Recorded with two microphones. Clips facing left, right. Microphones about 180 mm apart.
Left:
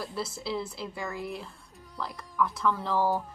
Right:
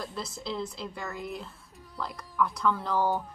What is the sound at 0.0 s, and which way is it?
Speech, 5° left (ahead or behind).